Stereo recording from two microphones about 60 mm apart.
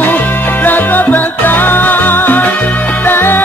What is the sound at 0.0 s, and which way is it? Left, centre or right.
Music, left.